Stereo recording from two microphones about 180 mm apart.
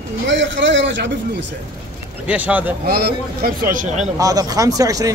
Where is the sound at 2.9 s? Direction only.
60° right (ahead or behind); by 4.1 s 45° right (ahead or behind).